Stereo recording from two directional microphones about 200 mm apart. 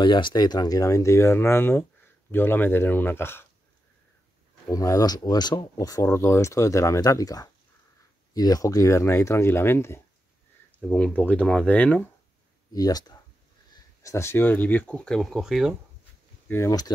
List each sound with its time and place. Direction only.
0.0 s speech: 25° left (ahead or behind)
4.6 s speech: 15° left (ahead or behind)
12.7 s speech: 20° left (ahead or behind); by 15.7 s centre (ahead or behind)
16.4 s speech: 15° left (ahead or behind)